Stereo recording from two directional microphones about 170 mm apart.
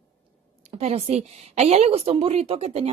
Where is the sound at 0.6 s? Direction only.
40° right (ahead or behind).